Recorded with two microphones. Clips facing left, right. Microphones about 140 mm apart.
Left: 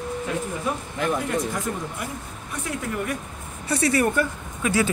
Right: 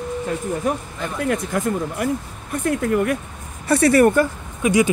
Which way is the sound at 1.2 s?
60° right (ahead or behind).